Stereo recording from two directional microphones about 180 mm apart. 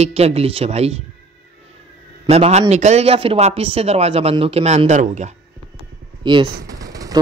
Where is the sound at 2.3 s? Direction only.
35° right (ahead or behind).